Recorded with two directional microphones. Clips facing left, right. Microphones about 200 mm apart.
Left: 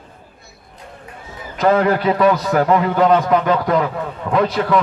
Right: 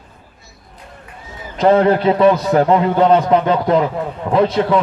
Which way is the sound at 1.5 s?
25° right (ahead or behind).